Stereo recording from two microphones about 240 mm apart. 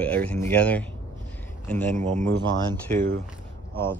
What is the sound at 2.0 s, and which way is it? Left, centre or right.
Speech, right.